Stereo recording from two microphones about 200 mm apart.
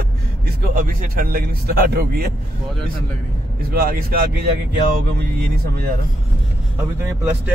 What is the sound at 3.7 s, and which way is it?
Speech, 45° right (ahead or behind).